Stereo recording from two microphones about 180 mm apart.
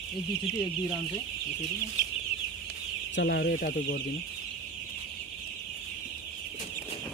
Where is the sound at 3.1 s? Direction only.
65° left (ahead or behind).